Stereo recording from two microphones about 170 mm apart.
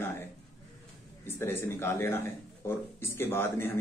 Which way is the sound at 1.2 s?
15° left (ahead or behind).